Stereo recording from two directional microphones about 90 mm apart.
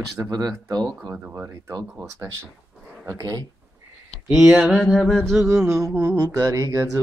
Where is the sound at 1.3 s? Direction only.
30° right (ahead or behind).